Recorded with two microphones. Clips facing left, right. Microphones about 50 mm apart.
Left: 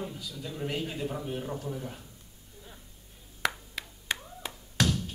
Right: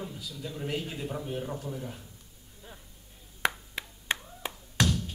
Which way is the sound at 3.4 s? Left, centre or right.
Right.